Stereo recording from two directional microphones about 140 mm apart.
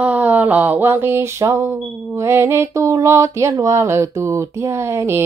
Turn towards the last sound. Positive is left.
turn(degrees=-15)  # may be behind; listen again after turning